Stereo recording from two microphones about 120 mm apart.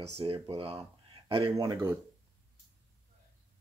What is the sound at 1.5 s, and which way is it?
Speech, 30° right (ahead or behind).